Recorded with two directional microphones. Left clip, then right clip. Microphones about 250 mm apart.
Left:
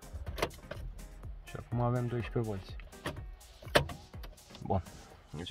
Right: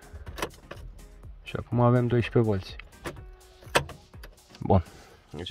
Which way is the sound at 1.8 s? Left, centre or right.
Right.